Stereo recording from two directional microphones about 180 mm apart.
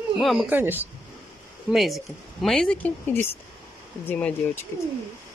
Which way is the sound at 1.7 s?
Centre (ahead or behind).